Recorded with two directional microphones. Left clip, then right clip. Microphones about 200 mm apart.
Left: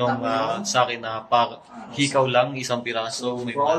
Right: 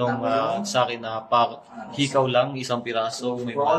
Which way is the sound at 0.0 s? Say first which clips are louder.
Even; centre (ahead or behind).